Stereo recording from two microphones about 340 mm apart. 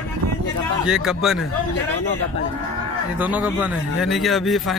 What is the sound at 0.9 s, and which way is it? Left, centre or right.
Speech, centre.